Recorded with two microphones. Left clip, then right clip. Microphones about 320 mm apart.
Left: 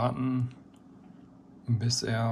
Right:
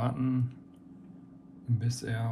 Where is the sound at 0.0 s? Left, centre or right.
Centre.